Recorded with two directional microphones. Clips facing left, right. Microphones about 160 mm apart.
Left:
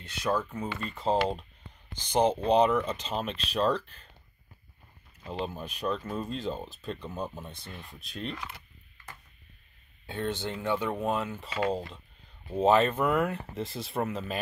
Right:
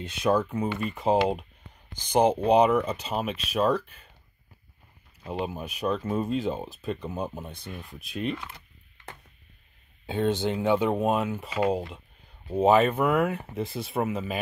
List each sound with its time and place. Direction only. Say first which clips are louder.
0.1 s speech: right 5 dB; 15° right (ahead or behind)
5.2 s speech: right 3 dB; 10° right (ahead or behind)
10.0 s speech: right 7 dB; 15° right (ahead or behind)